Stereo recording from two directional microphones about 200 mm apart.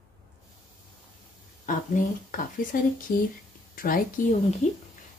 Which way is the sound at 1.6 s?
40° left (ahead or behind).